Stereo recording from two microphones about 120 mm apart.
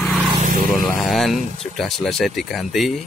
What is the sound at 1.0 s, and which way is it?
Speech, centre (ahead or behind).